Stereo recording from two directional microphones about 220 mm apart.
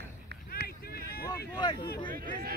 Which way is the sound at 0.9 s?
45° left (ahead or behind).